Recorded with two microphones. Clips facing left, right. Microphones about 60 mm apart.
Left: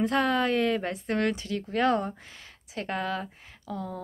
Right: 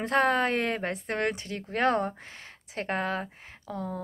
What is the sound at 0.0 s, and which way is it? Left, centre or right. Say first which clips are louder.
Speech: right 1 dB; right.